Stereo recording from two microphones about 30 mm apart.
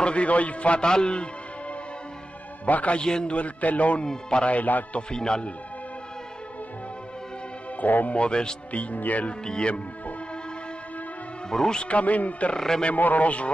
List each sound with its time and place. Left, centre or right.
0.0 s a man's voice: left
0.7 s a man's voice: left
2.6 s a man's voice: left
3.0 s a man's voice: left
3.3 s a man's voice: left
4.0 s a man's voice: left
7.8 s speech: left
8.1 s a man's voice: left
8.7 s speech: left
9.4 s a man's voice: left
11.5 s a man's voice: left
11.8 s a man's voice: left
12.5 s speech: centre
12.9 s speech: left